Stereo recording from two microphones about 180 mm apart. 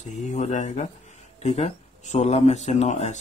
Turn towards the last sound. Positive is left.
turn(degrees=40)  # may be behind; listen again after turning